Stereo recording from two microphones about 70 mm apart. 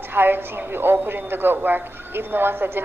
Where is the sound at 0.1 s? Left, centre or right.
Right.